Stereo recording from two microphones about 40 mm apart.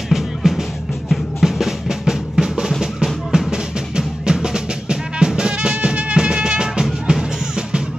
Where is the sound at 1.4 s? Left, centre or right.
Centre.